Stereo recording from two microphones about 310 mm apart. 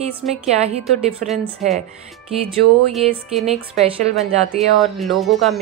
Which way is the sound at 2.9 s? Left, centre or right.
Centre.